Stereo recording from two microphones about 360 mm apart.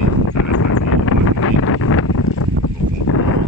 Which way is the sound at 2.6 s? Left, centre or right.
Left.